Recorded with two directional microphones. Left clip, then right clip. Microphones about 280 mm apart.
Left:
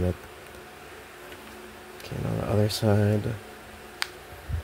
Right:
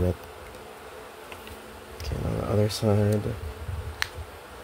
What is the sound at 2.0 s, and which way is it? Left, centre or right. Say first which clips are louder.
Speech: even; centre.